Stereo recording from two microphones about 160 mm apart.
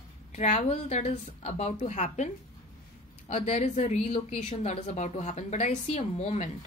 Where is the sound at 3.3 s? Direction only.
40° left (ahead or behind).